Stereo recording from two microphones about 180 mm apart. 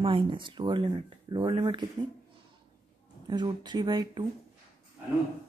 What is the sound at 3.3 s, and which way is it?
Speech, 25° right (ahead or behind).